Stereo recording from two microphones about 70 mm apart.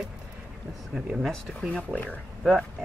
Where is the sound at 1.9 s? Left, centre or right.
Centre.